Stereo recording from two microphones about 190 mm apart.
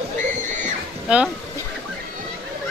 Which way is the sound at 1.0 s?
5° right (ahead or behind).